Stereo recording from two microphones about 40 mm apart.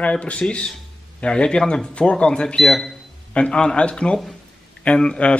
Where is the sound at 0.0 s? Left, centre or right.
Left.